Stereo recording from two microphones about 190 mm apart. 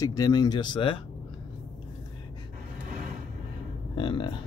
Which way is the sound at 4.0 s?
25° left (ahead or behind).